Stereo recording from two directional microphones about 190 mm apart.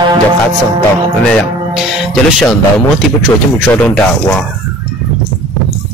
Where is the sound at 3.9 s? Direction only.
5° left (ahead or behind).